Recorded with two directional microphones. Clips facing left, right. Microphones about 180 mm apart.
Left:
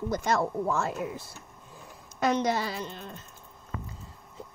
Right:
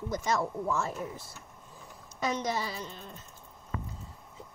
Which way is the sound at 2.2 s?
65° left (ahead or behind).